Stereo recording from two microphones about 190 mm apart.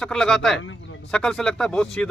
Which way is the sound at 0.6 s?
90° left.